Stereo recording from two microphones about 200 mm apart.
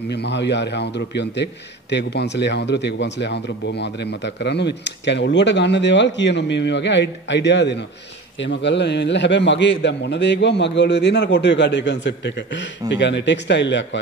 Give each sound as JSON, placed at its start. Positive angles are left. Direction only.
{"t": 0.1, "sound": "a man's voice", "side_deg": 60}